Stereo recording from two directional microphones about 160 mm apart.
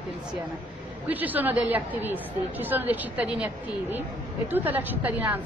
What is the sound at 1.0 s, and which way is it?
A woman's voice, 10° right (ahead or behind).